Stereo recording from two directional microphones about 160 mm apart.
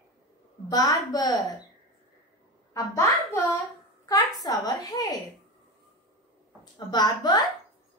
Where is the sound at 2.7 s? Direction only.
20° left (ahead or behind).